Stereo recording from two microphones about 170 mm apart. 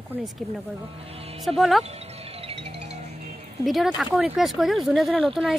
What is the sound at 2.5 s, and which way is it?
Music, 35° right (ahead or behind).